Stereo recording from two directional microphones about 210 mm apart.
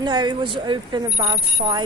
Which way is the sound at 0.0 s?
20° right (ahead or behind).